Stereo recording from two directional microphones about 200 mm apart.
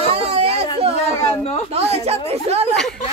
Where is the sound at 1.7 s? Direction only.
30° right (ahead or behind).